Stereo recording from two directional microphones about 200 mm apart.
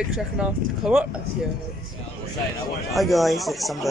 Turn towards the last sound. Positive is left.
turn(degrees=0)  # may be behind; listen again after turning